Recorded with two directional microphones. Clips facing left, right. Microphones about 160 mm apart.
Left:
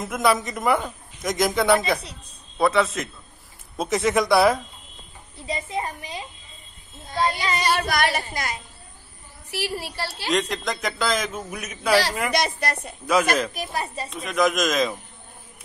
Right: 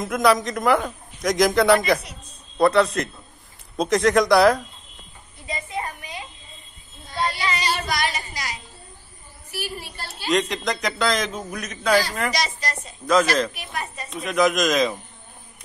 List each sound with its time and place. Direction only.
0.0 s a man's voice: centre (ahead or behind)
5.5 s a sound: 30° left (ahead or behind)
7.4 s child singing: 50° left (ahead or behind)
9.5 s a woman's voice: 75° left (ahead or behind)
10.2 s a man's voice: centre (ahead or behind)
12.3 s speech: 60° left (ahead or behind)
13.0 s speech: 10° left (ahead or behind)
13.5 s speech: 35° left (ahead or behind)
14.1 s a man's voice: centre (ahead or behind)